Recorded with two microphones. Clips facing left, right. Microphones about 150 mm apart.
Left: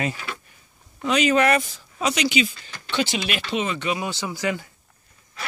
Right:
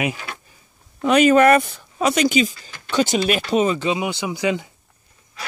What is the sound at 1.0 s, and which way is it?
Speech, 50° right (ahead or behind).